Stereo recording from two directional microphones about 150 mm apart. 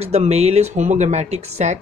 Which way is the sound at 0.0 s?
45° right (ahead or behind).